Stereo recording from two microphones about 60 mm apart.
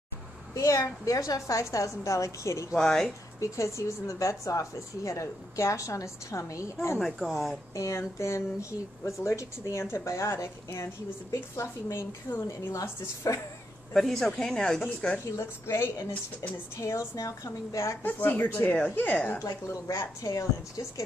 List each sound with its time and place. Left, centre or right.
0.6 s speech: left
2.7 s speech: centre
3.3 s speech: left
7.2 s speech: centre
7.7 s speech: left
10.0 s a woman's voice: left
13.9 s speech: centre
15.2 s a woman's voice: left
16.1 s a woman's voice: left
16.8 s speech: left
18.0 s a woman's voice: left
19.4 s a woman's voice: left